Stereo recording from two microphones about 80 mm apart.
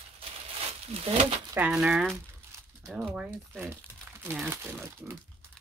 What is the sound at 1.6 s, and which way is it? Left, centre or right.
Speech, centre.